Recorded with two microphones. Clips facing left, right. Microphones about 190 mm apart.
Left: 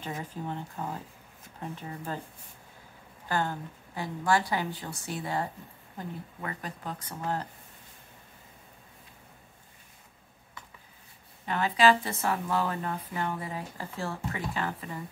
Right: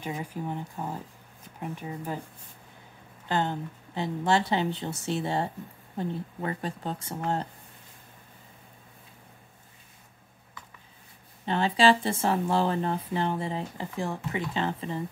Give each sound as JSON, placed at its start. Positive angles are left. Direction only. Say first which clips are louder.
{"t": 0.0, "sound": "speech", "louder": "right 3 dB", "side_deg": -15}
{"t": 3.3, "sound": "speech", "louder": "right 2 dB", "side_deg": -20}
{"t": 11.4, "sound": "speech", "louder": "right 2 dB", "side_deg": -30}